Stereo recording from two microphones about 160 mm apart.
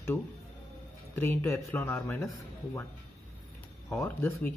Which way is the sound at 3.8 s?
15° left (ahead or behind).